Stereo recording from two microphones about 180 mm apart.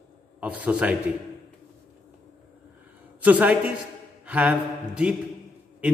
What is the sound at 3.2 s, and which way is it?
A man's voice, 10° right (ahead or behind).